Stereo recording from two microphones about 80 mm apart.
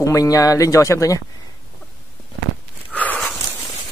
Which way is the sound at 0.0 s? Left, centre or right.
Left.